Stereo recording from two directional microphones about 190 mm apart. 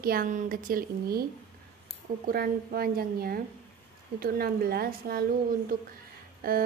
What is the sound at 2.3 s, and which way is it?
A woman's voice, 50° right (ahead or behind).